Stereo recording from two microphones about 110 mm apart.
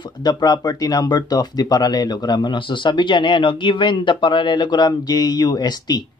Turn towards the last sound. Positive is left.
turn(degrees=40)  # may be behind; listen again after turning